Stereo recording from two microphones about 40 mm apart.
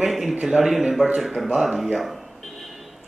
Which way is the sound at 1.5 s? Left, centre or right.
Right.